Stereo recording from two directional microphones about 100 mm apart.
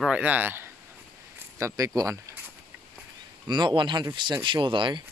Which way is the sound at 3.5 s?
50° right (ahead or behind).